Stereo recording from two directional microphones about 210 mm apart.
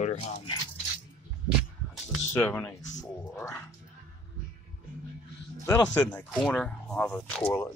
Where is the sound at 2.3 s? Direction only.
5° left (ahead or behind).